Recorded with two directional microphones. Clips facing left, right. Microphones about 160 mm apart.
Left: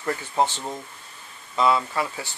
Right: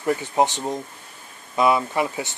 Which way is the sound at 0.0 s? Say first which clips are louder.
Right 4 dB; 15° right (ahead or behind).